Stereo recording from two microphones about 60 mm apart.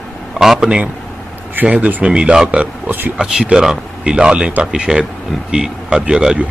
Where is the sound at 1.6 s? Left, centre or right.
Right.